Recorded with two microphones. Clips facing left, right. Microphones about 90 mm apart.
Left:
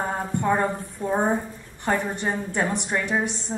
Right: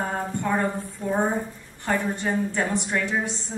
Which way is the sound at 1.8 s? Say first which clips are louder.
Left 1 dB; 20° left (ahead or behind).